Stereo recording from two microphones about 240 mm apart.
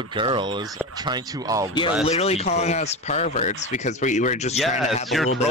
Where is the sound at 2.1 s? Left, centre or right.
Left.